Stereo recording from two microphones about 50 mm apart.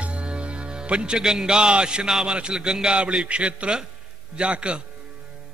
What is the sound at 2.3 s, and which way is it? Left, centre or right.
A man's voice, centre.